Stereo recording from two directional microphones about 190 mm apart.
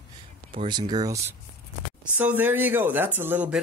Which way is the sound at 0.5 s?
25° right (ahead or behind).